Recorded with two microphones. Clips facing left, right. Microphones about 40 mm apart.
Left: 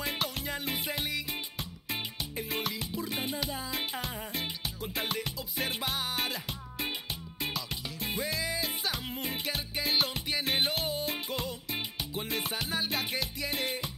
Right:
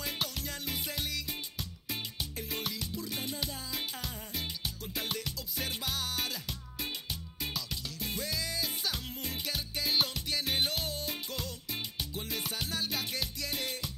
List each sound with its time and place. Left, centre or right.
0.0 s music: centre